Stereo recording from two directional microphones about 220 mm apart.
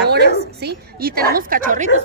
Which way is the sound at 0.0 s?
50° right (ahead or behind).